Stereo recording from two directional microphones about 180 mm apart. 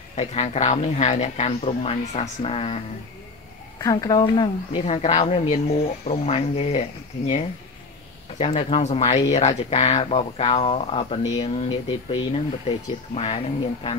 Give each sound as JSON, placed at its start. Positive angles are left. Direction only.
{"t": 0.1, "sound": "speech", "side_deg": 35}
{"t": 3.8, "sound": "speech", "side_deg": 20}
{"t": 4.8, "sound": "speech", "side_deg": 35}